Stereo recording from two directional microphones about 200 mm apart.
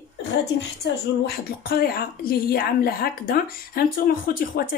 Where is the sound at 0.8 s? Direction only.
60° left (ahead or behind).